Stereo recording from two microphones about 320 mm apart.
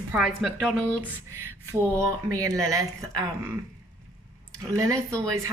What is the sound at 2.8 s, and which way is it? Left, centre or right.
Speech, centre.